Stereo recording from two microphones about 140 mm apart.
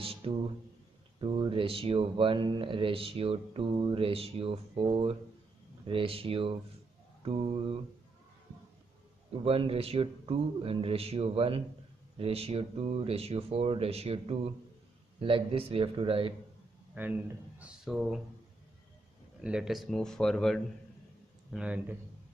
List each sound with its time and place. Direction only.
0.0 s music: 40° right (ahead or behind)
1.2 s speech: 40° right (ahead or behind)
9.4 s speech: 45° right (ahead or behind)
16.9 s speech: 10° right (ahead or behind)
19.4 s speech: 5° right (ahead or behind)
21.5 s a man's voice: 5° right (ahead or behind)